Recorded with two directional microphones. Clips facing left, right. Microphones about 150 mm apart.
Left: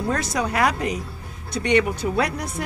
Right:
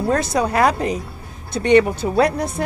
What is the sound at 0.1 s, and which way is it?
Speech, 30° right (ahead or behind).